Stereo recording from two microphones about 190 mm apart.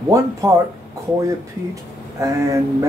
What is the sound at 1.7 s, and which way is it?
Speech, 15° right (ahead or behind).